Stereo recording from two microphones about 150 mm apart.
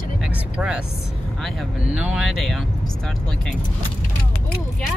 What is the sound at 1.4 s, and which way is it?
Speech, centre (ahead or behind).